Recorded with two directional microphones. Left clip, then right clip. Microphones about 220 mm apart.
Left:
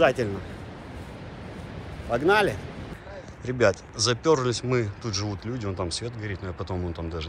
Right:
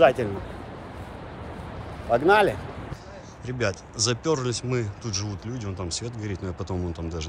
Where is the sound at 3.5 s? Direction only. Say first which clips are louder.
Left 6 dB; 10° right (ahead or behind).